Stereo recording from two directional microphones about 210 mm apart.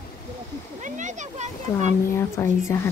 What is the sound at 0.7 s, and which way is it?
Speech, 35° right (ahead or behind).